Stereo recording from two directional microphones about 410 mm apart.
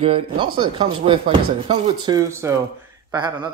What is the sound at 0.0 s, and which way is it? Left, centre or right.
Speech, centre.